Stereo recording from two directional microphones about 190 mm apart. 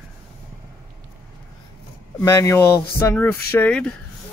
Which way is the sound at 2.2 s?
15° left (ahead or behind).